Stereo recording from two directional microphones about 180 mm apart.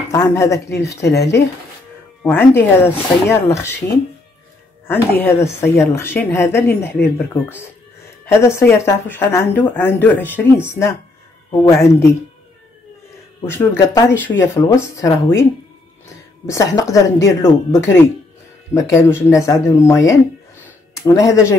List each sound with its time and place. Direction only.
0.1 s speech: 15° left (ahead or behind)
2.2 s speech: 10° left (ahead or behind)
13.4 s speech: 15° left (ahead or behind)
16.4 s speech: 15° left (ahead or behind)